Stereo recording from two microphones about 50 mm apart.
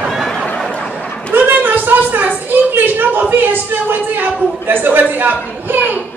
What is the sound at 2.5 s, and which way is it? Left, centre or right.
A woman's voice, right.